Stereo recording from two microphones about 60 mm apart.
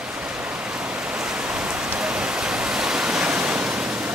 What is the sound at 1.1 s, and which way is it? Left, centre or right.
Rain, centre.